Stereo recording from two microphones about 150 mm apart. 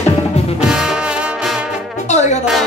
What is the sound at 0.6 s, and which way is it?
Music, 5° right (ahead or behind).